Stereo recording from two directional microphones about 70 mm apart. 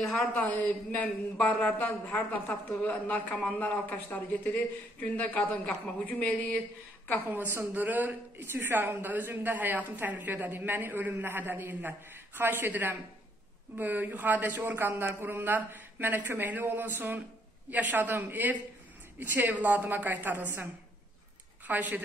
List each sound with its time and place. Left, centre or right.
0.2 s a man's voice: left
3.1 s a man's voice: centre
7.3 s a woman's voice: right
21.6 s a woman's voice: right